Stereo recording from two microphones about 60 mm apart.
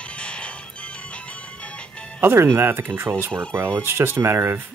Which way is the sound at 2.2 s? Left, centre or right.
Right.